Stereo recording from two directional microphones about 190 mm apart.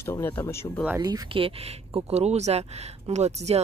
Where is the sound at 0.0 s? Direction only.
10° left (ahead or behind).